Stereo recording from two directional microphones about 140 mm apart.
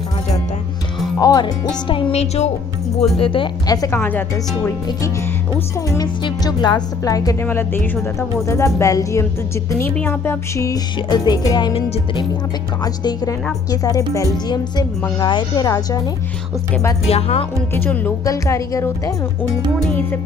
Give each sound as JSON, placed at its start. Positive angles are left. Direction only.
{"t": 1.2, "sound": "a woman's voice", "side_deg": 30}
{"t": 1.9, "sound": "speech", "side_deg": 45}
{"t": 3.2, "sound": "speech", "side_deg": 40}
{"t": 3.6, "sound": "a woman's voice", "side_deg": 25}
{"t": 7.4, "sound": "a woman's voice", "side_deg": 15}
{"t": 12.8, "sound": "a woman's voice", "side_deg": 30}
{"t": 17.1, "sound": "speech", "side_deg": 45}
{"t": 17.7, "sound": "speech", "side_deg": 15}
{"t": 18.2, "sound": "a woman's voice", "side_deg": 25}